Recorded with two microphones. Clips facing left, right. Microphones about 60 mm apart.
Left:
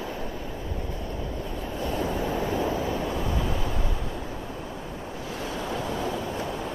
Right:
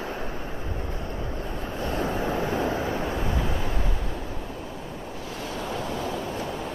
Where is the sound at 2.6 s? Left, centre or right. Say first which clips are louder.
Even; right.